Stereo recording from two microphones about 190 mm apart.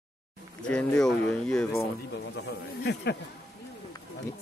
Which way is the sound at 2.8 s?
60° left (ahead or behind).